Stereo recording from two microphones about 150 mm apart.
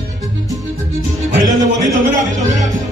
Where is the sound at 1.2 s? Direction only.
55° right (ahead or behind).